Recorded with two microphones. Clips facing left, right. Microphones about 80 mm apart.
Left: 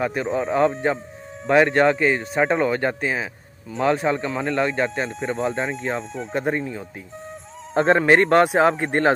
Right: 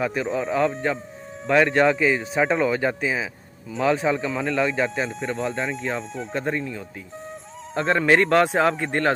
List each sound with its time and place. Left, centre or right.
0.0 s speech: centre
6.3 s speech: centre
7.7 s speech: left
8.2 s speech: centre
8.7 s speech: left